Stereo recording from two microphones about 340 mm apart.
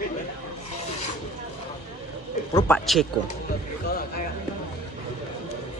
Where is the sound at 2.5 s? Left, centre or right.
Centre.